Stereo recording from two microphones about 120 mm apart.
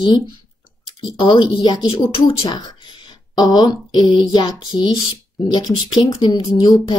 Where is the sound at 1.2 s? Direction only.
45° left (ahead or behind).